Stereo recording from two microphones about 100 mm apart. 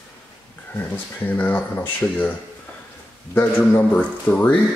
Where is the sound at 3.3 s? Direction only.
20° left (ahead or behind).